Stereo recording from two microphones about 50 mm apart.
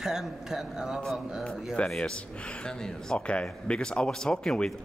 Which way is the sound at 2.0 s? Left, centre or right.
Centre.